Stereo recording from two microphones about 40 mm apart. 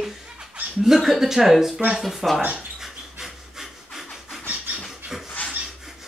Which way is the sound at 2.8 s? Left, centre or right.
Centre.